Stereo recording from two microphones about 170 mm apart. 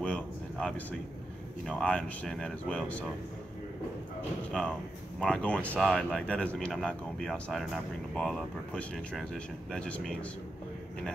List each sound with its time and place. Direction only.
0.0 s a sound: 5° left (ahead or behind)
1.6 s speech: 5° left (ahead or behind)
4.5 s speech: 5° left (ahead or behind)